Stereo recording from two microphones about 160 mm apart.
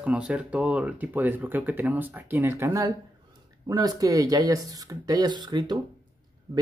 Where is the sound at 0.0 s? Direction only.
10° right (ahead or behind).